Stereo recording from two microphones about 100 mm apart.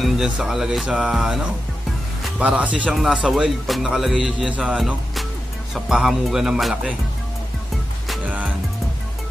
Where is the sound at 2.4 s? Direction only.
10° right (ahead or behind).